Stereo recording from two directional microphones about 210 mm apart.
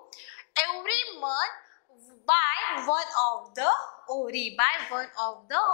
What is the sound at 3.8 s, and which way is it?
Speech, 35° left (ahead or behind).